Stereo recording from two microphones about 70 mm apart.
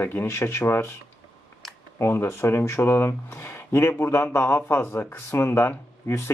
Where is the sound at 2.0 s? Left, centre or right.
Left.